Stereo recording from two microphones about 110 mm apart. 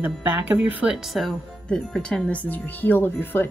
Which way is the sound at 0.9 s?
Centre (ahead or behind).